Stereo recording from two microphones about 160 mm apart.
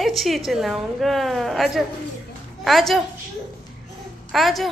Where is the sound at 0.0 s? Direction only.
Centre (ahead or behind).